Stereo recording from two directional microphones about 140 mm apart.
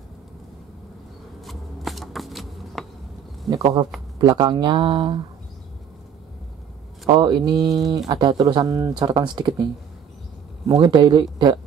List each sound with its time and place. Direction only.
1.4 s shuffling cards: centre (ahead or behind)
3.5 s speech: centre (ahead or behind)
4.2 s speech: 30° right (ahead or behind)
7.1 s speech: 35° right (ahead or behind)
10.7 s speech: 35° right (ahead or behind)